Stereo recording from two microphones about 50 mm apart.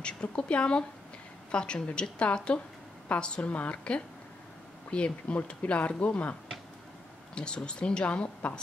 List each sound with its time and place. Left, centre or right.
0.0 s a woman's voice: left
7.3 s speech: centre